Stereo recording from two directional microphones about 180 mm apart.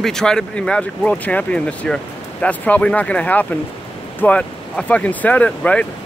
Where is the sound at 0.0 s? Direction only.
5° left (ahead or behind).